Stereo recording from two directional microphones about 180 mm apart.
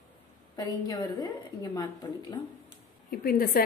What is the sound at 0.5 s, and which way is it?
A woman's voice, 20° left (ahead or behind).